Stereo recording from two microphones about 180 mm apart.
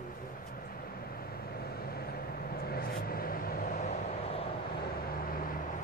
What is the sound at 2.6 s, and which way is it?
Vehicle, 60° left (ahead or behind).